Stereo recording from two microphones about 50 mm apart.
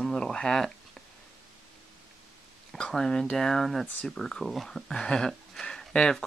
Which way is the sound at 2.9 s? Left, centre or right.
Centre.